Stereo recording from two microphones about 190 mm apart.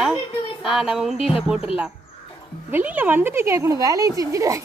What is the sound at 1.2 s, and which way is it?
Speech, 30° left (ahead or behind).